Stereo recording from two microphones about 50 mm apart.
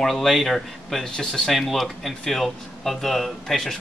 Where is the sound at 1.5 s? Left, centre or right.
Centre.